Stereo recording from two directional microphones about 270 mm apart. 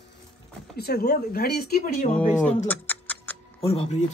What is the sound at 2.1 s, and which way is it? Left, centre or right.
Speech, centre.